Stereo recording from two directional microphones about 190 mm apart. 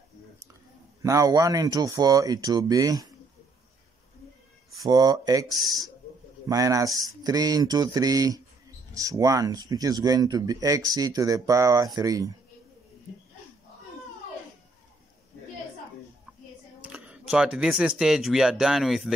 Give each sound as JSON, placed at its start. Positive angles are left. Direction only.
{"t": 1.0, "sound": "speech", "side_deg": -15}
{"t": 4.8, "sound": "speech", "side_deg": -20}
{"t": 16.8, "sound": "speech", "side_deg": -5}